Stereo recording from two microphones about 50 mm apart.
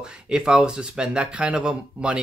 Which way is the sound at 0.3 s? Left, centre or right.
Centre.